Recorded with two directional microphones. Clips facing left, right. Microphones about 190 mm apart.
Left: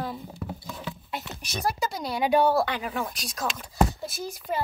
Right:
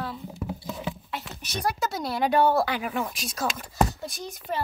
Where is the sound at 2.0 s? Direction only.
Centre (ahead or behind).